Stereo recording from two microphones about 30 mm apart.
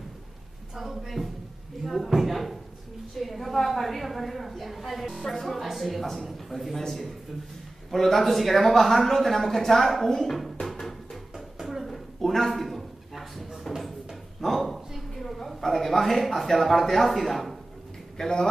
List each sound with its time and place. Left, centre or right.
0.7 s speech: centre
1.8 s a sound: centre
3.2 s speech: centre
10.6 s music: centre
11.9 s a sound: centre
13.1 s drawer open or close: centre
14.4 s a woman's voice: centre
18.2 s a man's voice: centre